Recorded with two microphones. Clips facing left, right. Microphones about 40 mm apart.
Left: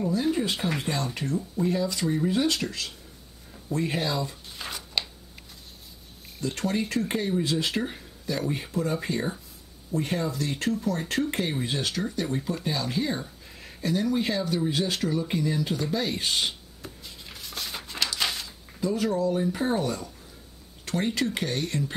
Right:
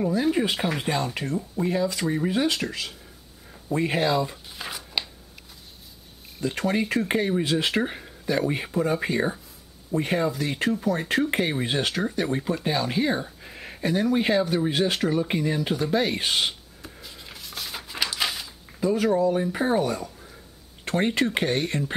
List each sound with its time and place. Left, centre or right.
0.1 s speech: centre
4.6 s a sound: centre
6.4 s speech: centre
16.8 s a sound: centre
18.8 s speech: centre
20.8 s speech: right